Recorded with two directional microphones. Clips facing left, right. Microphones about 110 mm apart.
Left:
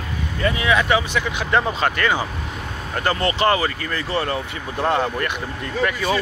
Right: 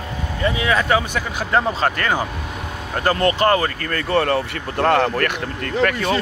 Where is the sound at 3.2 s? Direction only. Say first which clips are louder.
Right 2 dB; 45° right (ahead or behind).